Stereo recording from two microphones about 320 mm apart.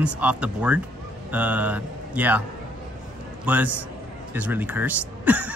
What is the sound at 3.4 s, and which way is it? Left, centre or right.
Speech, centre.